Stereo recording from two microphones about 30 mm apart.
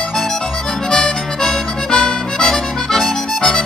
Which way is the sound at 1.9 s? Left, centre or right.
Left.